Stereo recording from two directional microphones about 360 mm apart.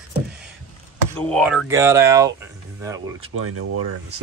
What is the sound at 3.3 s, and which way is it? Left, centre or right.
Speech, right.